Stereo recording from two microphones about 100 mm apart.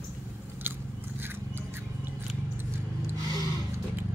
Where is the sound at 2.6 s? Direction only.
20° right (ahead or behind).